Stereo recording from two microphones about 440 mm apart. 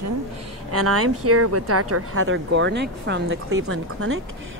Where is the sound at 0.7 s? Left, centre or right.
Right.